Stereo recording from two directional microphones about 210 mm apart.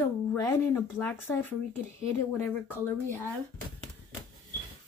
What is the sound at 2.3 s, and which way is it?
Speech, 10° left (ahead or behind).